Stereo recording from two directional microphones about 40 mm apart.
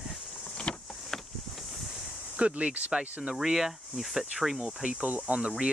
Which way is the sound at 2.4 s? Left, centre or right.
Right.